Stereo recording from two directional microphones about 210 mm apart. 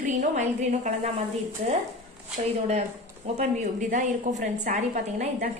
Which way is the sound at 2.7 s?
30° right (ahead or behind).